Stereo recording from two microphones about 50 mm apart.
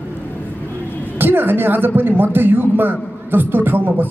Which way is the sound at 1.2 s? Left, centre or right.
Right.